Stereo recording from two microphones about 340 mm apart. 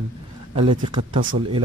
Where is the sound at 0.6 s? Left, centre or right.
Right.